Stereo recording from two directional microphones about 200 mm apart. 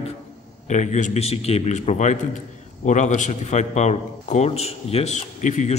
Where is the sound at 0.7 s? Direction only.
35° left (ahead or behind).